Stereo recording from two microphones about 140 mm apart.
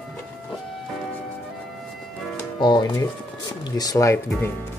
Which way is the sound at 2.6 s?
30° left (ahead or behind).